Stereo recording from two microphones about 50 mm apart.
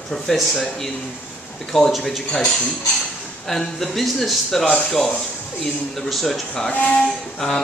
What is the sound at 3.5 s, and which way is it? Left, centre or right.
Speech, centre.